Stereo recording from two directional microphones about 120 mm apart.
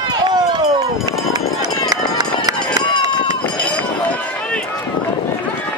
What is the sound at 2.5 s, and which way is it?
Run, 40° left (ahead or behind).